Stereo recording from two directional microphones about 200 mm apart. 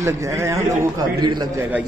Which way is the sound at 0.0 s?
15° right (ahead or behind).